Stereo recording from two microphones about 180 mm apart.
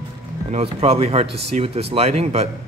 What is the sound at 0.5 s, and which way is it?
Speech, 35° right (ahead or behind).